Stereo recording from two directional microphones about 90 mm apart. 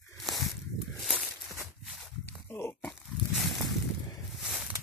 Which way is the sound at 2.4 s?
25° left (ahead or behind).